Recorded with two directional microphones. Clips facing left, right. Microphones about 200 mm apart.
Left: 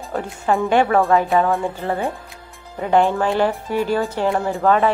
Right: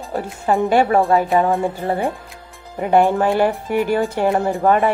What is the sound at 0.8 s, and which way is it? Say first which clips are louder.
Speech: right 1 dB; 15° right (ahead or behind).